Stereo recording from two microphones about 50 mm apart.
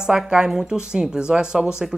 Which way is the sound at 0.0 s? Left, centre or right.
Centre.